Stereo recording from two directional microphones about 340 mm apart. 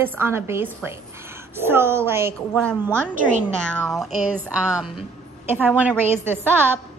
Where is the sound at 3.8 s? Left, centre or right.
Centre.